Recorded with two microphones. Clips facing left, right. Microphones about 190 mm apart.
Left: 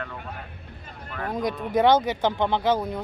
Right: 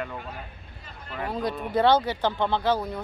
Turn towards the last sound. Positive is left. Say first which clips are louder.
# left 2 dB
turn(degrees=15)  # may be behind; listen again after turning